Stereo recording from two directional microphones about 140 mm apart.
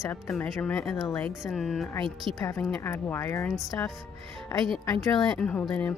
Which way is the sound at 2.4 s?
20° left (ahead or behind).